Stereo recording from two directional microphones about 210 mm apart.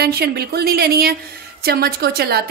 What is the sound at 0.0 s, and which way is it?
A woman's voice, 50° right (ahead or behind).